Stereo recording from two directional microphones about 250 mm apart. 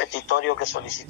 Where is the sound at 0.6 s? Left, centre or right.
Left.